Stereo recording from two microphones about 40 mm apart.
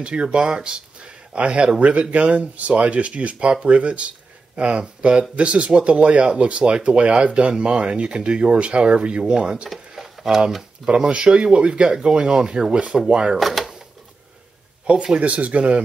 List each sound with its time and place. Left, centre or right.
0.0 s speech: right
9.7 s a sound: centre
10.9 s speech: right
13.4 s drawer open or close: centre
15.1 s speech: right